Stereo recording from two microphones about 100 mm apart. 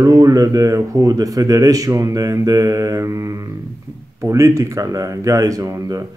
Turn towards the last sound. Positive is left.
turn(degrees=-35)  # may be behind; listen again after turning